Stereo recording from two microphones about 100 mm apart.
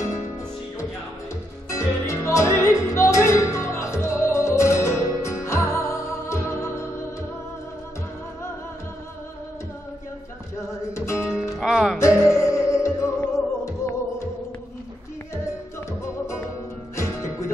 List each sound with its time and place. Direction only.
1.7 s music: 30° left (ahead or behind)
10.9 s music: 30° left (ahead or behind)
11.3 s music: 5° right (ahead or behind)
12.0 s music: 30° left (ahead or behind)
16.9 s music: 30° left (ahead or behind)